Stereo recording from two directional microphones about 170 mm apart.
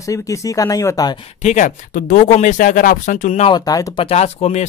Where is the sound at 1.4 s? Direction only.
45° left (ahead or behind).